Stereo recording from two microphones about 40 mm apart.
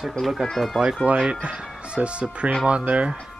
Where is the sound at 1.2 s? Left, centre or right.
Right.